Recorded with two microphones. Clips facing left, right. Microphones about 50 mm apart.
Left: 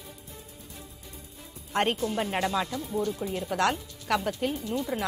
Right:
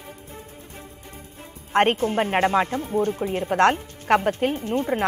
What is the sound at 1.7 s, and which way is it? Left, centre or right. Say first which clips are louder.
Speech: right 7 dB; right.